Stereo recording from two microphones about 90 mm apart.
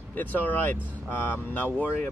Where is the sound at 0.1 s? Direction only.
20° left (ahead or behind).